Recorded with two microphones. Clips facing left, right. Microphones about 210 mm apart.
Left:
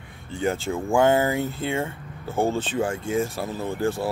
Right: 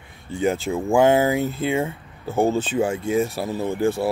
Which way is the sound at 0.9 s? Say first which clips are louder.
Right 3 dB; 10° right (ahead or behind).